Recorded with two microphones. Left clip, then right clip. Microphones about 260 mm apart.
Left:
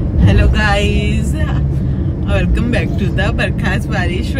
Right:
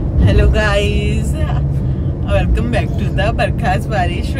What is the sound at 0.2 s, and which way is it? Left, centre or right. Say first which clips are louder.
Speech: even; centre.